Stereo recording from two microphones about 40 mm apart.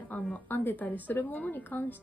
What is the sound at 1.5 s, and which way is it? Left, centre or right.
Speech, left.